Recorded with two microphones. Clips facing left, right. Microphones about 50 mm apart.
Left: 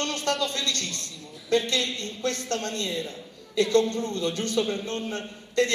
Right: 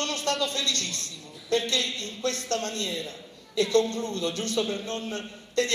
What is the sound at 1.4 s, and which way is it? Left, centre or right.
A woman's voice, left.